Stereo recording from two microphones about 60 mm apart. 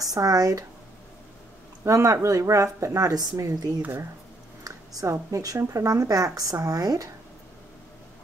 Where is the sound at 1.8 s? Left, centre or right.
Right.